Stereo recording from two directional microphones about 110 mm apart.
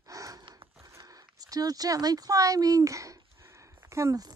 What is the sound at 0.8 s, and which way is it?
Speech, 30° right (ahead or behind).